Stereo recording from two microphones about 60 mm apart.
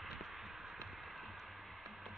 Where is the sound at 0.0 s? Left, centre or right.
Centre.